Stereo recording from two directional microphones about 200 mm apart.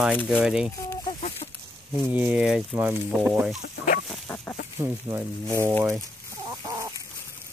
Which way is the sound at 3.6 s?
45° left (ahead or behind).